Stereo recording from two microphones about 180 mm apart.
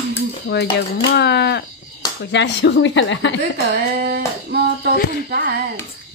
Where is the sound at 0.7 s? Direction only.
70° left (ahead or behind); by 3.3 s 90° left.